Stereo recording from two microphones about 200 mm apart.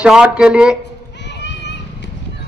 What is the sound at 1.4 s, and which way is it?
Children playing, 60° left (ahead or behind).